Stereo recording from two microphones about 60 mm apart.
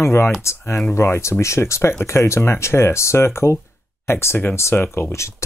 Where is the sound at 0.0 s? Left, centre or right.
Left.